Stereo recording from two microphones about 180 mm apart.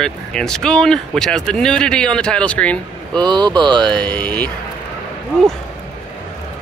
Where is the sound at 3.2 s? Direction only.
25° right (ahead or behind).